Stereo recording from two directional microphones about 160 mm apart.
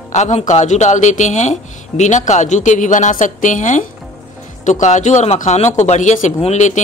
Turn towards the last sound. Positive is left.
turn(degrees=45)  # may be behind; listen again after turning